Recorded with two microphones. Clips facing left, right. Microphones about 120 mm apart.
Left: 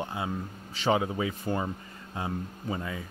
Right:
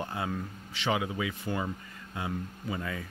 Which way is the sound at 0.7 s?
35° left (ahead or behind).